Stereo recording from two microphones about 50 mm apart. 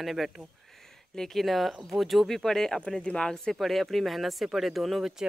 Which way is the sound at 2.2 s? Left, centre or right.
Centre.